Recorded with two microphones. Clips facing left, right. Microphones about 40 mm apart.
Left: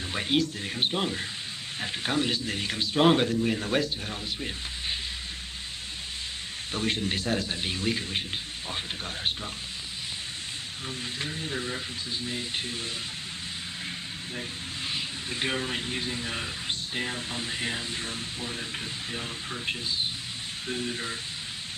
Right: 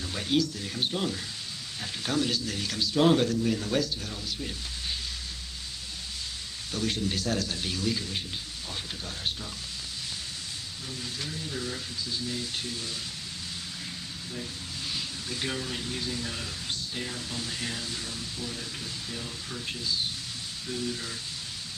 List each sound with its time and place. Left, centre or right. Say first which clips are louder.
0.1 s speech: left 1 dB; left
6.7 s speech: left 1 dB; left
11.1 s speech: left 3 dB; left
14.9 s a man's voice: left 2 dB; left
19.1 s speech: left 3 dB; left